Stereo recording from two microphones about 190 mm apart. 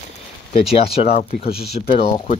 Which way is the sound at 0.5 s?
30° left (ahead or behind).